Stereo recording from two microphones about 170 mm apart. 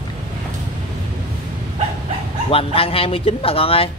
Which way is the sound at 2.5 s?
35° left (ahead or behind).